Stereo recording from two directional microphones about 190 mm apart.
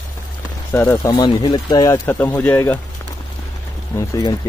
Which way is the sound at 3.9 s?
20° left (ahead or behind).